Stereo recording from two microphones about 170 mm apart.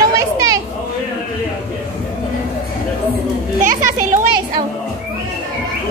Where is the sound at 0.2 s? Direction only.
20° right (ahead or behind).